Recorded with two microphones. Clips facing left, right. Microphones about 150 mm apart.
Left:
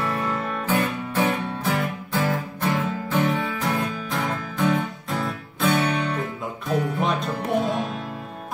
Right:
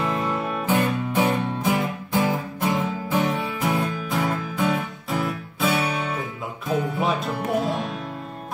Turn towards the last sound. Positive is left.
turn(degrees=0)  # may be behind; listen again after turning